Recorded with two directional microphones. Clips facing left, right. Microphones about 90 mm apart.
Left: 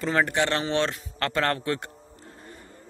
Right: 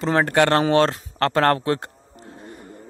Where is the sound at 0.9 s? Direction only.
35° right (ahead or behind).